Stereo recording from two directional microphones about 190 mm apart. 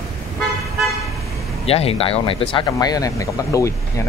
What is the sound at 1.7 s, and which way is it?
Speech, 30° left (ahead or behind).